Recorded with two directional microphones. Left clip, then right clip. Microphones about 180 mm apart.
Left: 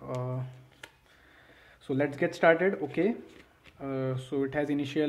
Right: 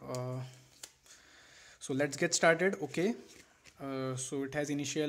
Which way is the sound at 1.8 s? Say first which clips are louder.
Left 4 dB; 30° right (ahead or behind).